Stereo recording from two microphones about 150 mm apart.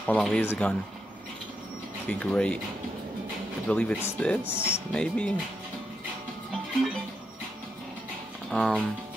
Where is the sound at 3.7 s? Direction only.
10° left (ahead or behind).